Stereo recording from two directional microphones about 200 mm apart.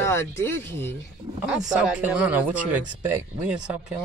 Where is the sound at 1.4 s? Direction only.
5° right (ahead or behind).